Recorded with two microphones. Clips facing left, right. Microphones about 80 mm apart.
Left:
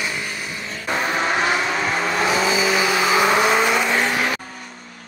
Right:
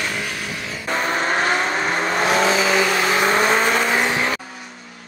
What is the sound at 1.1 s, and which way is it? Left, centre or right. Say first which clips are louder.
Vehicle: right 1 dB; right.